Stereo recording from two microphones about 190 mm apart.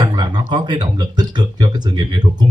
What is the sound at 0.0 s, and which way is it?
Speech, 20° right (ahead or behind).